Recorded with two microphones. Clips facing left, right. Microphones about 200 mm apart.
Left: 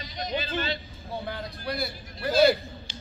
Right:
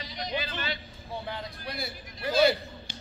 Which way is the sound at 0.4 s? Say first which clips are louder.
Left 4 dB; 25° left (ahead or behind).